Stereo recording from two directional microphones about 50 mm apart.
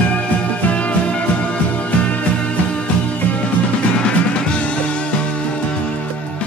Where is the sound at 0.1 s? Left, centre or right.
Left.